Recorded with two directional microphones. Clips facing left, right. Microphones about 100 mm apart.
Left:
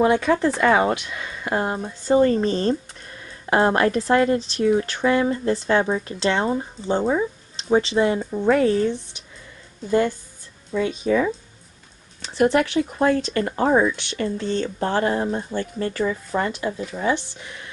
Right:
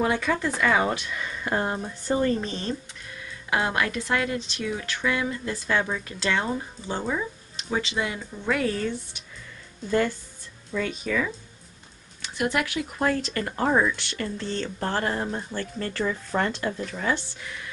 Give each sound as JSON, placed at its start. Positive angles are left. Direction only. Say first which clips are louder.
{"t": 0.0, "sound": "speech", "louder": "left 7 dB", "side_deg": 15}
{"t": 2.1, "sound": "speech", "louder": "left 8 dB", "side_deg": 25}
{"t": 2.5, "sound": "speech", "louder": "left 9 dB", "side_deg": 40}
{"t": 16.0, "sound": "speech", "louder": "left 2 dB", "side_deg": 10}
{"t": 17.0, "sound": "speech", "louder": "left 5 dB", "side_deg": 20}